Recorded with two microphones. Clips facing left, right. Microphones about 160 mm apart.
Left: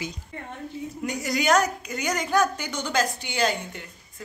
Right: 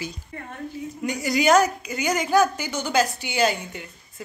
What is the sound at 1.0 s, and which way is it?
A woman's voice, centre (ahead or behind).